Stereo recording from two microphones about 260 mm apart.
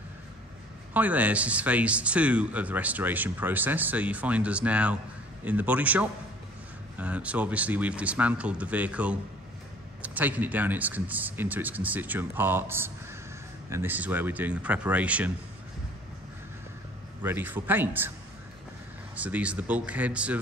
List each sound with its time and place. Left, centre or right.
0.9 s speech: centre
17.2 s speech: centre
19.1 s speech: centre